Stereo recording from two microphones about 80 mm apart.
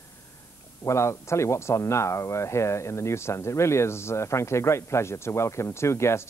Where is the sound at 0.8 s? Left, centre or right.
Left.